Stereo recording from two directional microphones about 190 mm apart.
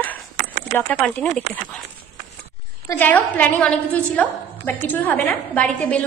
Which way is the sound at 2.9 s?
10° left (ahead or behind).